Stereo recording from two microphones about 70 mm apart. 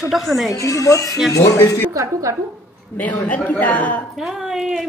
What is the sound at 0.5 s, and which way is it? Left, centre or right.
A woman's voice, left.